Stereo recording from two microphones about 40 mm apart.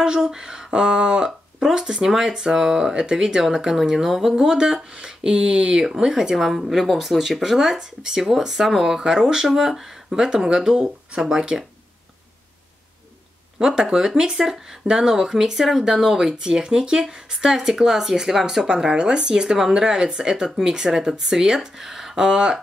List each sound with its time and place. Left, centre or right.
0.0 s speech: centre
3.8 s speech: centre
4.3 s speech: centre
6.3 s speech: centre
7.5 s speech: centre
13.6 s speech: centre
22.1 s speech: centre